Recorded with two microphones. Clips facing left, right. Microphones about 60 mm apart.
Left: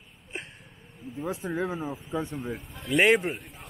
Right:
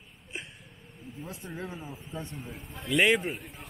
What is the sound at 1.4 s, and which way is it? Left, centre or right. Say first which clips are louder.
Speech: left 9 dB; left.